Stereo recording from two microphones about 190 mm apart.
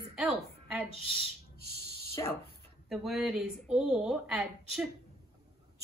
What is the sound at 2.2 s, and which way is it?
Speech, 15° left (ahead or behind).